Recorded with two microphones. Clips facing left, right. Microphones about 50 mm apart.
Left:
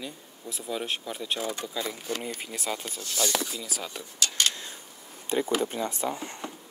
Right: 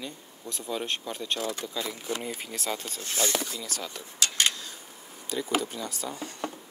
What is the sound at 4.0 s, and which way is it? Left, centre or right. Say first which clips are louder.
Speech: right 1 dB; right.